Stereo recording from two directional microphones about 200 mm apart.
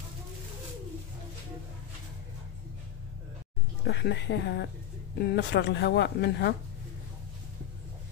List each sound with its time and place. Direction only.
3.8 s speech: 55° left (ahead or behind)